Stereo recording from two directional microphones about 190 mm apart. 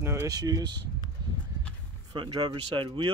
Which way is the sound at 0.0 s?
15° right (ahead or behind).